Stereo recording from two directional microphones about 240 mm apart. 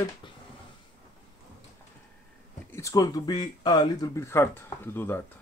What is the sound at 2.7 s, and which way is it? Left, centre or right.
Speech, centre.